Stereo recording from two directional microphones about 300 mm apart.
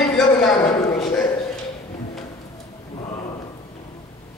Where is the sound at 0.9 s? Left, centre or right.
Centre.